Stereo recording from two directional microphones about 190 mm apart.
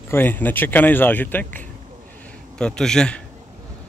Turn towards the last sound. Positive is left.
turn(degrees=5)  # may be behind; listen again after turning